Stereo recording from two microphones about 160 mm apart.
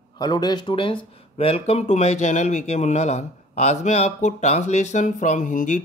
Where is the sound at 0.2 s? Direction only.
25° left (ahead or behind).